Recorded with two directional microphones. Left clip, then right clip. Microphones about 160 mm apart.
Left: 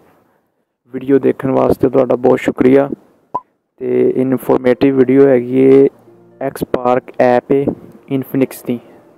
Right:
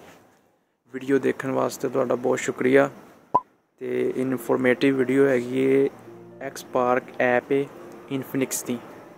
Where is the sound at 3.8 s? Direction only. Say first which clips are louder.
Left 12 dB; 55° left (ahead or behind).